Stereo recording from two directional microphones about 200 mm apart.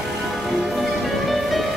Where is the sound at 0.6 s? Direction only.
Centre (ahead or behind).